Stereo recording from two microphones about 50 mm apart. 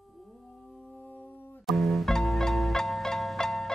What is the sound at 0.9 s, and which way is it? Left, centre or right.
Music, left.